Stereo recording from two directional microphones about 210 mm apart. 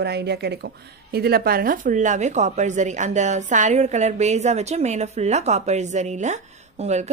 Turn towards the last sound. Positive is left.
turn(degrees=-30)  # may be behind; listen again after turning